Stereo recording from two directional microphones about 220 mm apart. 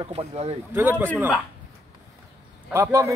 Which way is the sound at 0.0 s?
25° right (ahead or behind).